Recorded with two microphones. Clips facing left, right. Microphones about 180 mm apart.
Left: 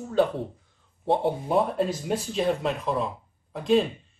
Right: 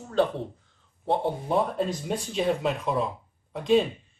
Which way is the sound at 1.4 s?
5° left (ahead or behind).